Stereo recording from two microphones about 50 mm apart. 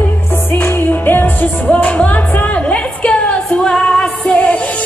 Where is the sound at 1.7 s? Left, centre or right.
Left.